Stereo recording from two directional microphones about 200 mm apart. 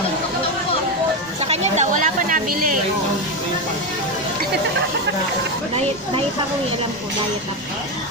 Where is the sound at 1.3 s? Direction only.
30° right (ahead or behind).